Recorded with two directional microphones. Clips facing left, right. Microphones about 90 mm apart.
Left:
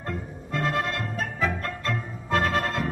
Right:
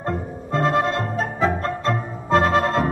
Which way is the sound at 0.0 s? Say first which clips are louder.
Right 7 dB; 30° right (ahead or behind).